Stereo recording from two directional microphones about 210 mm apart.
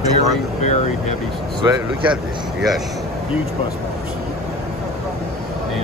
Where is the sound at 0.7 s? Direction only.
35° left (ahead or behind).